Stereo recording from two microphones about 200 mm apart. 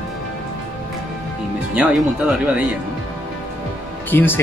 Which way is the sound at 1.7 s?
10° right (ahead or behind).